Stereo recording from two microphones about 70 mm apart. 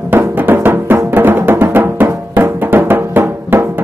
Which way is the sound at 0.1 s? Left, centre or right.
Right.